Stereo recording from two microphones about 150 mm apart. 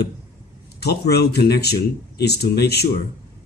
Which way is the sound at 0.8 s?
90° left.